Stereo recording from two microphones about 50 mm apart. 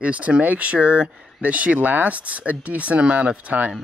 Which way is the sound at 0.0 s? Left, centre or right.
Right.